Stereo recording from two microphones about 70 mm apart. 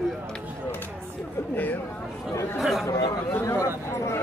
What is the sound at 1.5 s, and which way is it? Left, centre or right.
Speech, left.